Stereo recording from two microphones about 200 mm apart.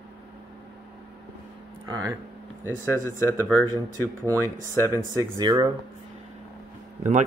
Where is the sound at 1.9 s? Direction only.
20° right (ahead or behind).